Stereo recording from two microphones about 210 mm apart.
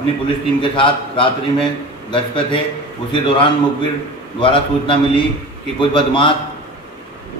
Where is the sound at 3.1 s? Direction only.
25° left (ahead or behind).